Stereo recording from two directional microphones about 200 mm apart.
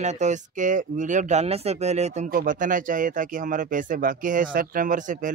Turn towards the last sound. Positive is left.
turn(degrees=-40)  # may be behind; listen again after turning